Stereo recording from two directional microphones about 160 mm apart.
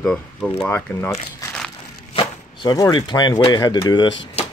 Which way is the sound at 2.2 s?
25° left (ahead or behind).